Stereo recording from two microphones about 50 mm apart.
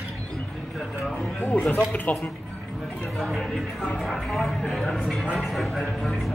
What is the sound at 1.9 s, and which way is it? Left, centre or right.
Speech, left.